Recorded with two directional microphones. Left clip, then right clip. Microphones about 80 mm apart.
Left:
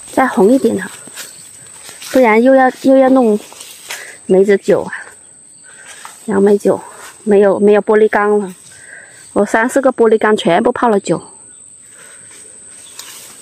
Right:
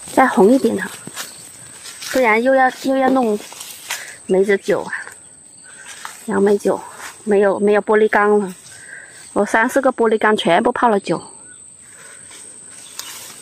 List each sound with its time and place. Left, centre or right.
0.1 s speech: centre
2.0 s speech: left
3.8 s walk: left
4.5 s speech: centre
6.2 s speech: centre